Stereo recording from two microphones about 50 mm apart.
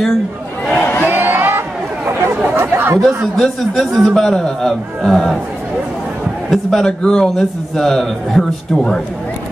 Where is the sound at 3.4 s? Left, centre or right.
Centre.